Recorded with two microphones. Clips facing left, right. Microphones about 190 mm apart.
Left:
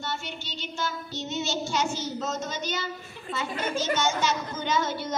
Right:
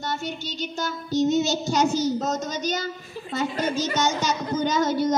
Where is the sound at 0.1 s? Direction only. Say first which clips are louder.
Right 6 dB; 40° right (ahead or behind).